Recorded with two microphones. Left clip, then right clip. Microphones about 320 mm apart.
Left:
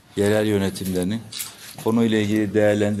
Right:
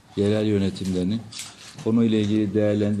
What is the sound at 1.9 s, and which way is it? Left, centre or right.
A man's voice, centre.